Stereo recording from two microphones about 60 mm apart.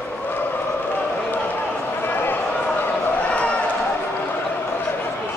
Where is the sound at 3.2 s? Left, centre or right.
Left.